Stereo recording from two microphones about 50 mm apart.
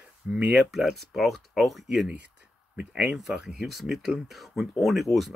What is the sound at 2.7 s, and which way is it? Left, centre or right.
Speech, right.